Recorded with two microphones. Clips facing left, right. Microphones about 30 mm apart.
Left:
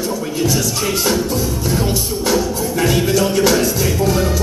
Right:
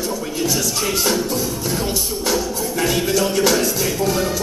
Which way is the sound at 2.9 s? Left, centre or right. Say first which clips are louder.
Left 3 dB; left.